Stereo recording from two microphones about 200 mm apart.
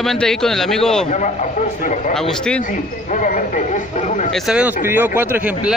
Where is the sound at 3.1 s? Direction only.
40° left (ahead or behind).